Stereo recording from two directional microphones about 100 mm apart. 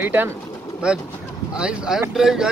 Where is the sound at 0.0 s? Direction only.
20° right (ahead or behind).